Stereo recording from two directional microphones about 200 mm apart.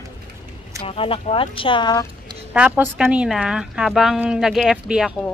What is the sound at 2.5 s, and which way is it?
Speech, 5° right (ahead or behind).